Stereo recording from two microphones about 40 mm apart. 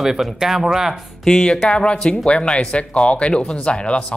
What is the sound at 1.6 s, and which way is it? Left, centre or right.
Speech, left.